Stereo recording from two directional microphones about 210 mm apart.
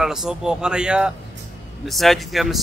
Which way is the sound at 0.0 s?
Centre (ahead or behind).